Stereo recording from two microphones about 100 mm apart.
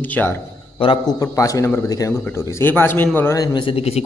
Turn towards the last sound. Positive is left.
turn(degrees=85)